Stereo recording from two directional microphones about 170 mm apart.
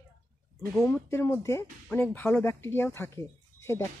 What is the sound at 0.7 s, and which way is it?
Speech, 10° left (ahead or behind).